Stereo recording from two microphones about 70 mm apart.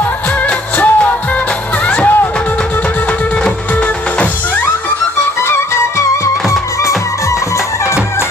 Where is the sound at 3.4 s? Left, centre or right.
Centre.